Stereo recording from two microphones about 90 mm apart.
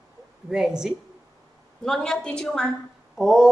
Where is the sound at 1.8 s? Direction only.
10° left (ahead or behind).